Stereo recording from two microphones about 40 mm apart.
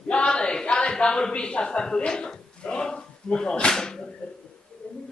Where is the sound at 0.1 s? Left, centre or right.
Left.